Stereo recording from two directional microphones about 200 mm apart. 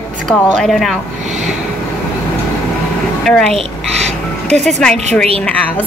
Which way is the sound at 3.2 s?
Centre (ahead or behind).